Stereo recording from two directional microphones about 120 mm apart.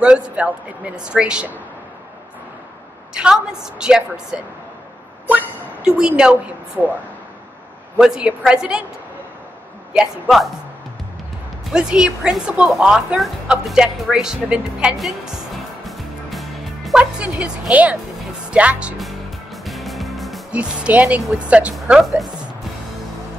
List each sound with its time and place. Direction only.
0.0 s speech: 10° right (ahead or behind)
3.2 s speech: 5° right (ahead or behind)
8.0 s speech: 10° right (ahead or behind)
9.9 s speech: 5° right (ahead or behind)
11.7 s speech: 5° right (ahead or behind)
18.5 s music: 10° right (ahead or behind)
20.5 s a woman's voice: 10° right (ahead or behind)